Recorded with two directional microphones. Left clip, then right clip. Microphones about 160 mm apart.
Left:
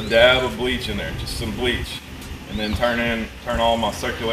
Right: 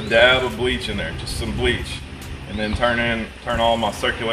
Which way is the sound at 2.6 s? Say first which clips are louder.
Right 1 dB; 15° right (ahead or behind).